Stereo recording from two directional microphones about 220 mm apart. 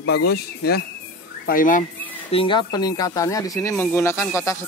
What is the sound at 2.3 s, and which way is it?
Speech, 25° left (ahead or behind).